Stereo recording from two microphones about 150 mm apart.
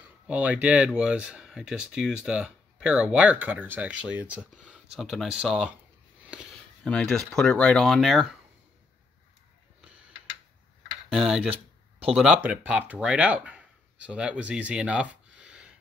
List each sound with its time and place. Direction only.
0.3 s speech: 10° right (ahead or behind)
6.8 s speech: 5° left (ahead or behind)
11.1 s speech: 5° right (ahead or behind)
11.5 s a sound: 40° right (ahead or behind)
12.2 s speech: 5° right (ahead or behind)